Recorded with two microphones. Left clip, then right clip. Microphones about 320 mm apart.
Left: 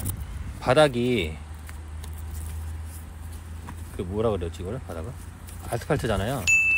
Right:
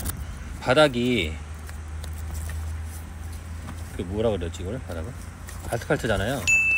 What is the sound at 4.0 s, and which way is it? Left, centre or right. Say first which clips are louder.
Speech: right 1 dB; left.